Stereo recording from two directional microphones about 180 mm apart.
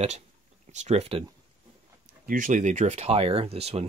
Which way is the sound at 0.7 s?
40° right (ahead or behind).